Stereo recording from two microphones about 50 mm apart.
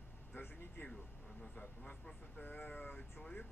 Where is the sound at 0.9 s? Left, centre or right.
Centre.